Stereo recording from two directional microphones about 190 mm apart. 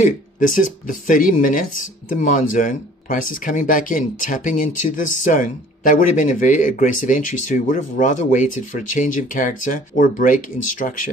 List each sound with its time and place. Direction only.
0.0 s speech: 45° left (ahead or behind)